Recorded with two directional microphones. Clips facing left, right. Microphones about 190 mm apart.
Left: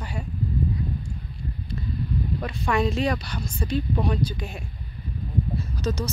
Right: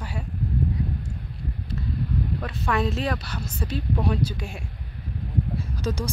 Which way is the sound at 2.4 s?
Centre (ahead or behind).